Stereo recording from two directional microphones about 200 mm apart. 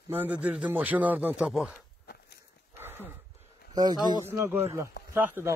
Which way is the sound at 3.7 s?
20° right (ahead or behind).